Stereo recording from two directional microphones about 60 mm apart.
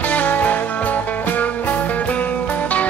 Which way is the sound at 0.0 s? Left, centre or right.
Left.